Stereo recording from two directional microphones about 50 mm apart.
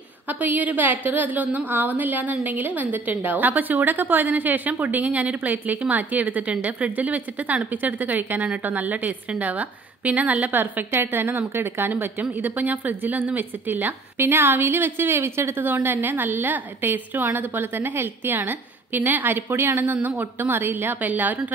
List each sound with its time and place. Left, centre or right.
0.3 s a woman's voice: right
10.5 s speech: right
11.9 s speech: right
19.8 s a woman's voice: right